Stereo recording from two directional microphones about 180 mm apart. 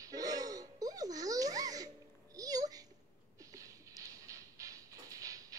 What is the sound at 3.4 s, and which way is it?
Music, 20° right (ahead or behind).